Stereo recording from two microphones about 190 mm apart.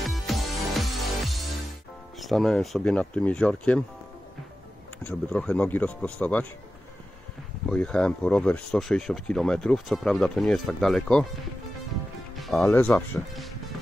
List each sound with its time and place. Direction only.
0.0 s music: centre (ahead or behind)
2.1 s speech: centre (ahead or behind)
5.3 s speech: 5° left (ahead or behind)
7.7 s speech: 5° left (ahead or behind)
12.4 s music: centre (ahead or behind)
12.6 s speech: 10° left (ahead or behind)